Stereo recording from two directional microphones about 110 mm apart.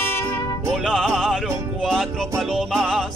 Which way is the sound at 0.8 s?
Centre (ahead or behind).